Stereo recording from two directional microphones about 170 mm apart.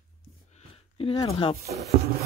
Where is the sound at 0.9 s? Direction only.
25° left (ahead or behind).